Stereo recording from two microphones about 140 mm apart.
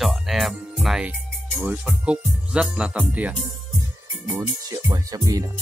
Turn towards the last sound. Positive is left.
turn(degrees=-25)  # may be behind; listen again after turning